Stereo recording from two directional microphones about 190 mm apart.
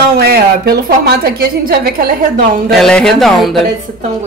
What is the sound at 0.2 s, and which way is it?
A woman's voice, 55° right (ahead or behind).